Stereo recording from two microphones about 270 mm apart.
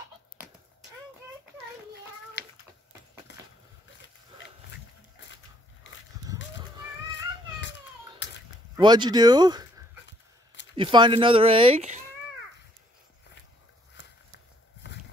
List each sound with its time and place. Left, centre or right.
2.4 s cat: left
6.3 s children playing: centre
8.7 s speech: centre
10.0 s a sound: left
10.7 s speech: centre